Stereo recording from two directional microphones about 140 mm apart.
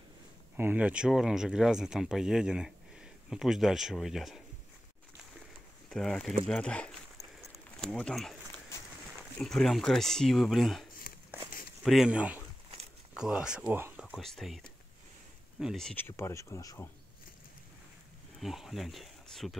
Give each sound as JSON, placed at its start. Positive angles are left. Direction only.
{"t": 0.6, "sound": "speech", "side_deg": -10}
{"t": 5.9, "sound": "speech", "side_deg": 5}
{"t": 9.4, "sound": "speech", "side_deg": 5}
{"t": 15.6, "sound": "speech", "side_deg": 0}
{"t": 16.0, "sound": "speech", "side_deg": 20}
{"t": 18.4, "sound": "speech", "side_deg": 0}